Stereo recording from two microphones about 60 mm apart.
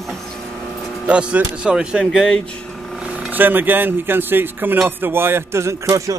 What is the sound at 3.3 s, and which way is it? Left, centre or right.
Speech, right.